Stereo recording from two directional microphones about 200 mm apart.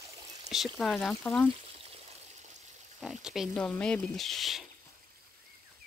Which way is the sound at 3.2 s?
Centre (ahead or behind).